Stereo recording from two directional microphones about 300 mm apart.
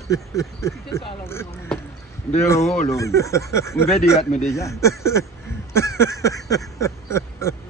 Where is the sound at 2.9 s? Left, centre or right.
Centre.